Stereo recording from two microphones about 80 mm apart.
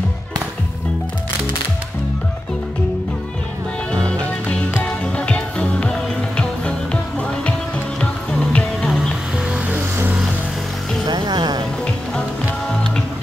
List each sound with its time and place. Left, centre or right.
4.8 s music: centre
9.5 s music: right
11.1 s music: right